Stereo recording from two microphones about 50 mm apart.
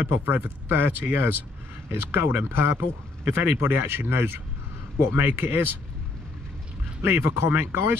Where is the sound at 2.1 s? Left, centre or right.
Right.